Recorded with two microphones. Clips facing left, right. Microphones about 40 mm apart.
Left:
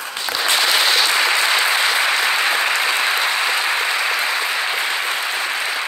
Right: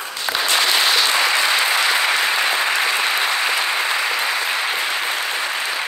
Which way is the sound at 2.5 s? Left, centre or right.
Left.